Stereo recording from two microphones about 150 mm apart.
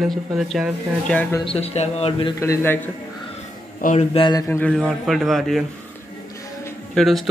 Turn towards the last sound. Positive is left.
turn(degrees=0)  # may be behind; listen again after turning